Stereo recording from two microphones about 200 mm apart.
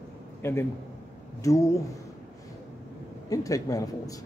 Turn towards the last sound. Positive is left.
turn(degrees=15)  # may be behind; listen again after turning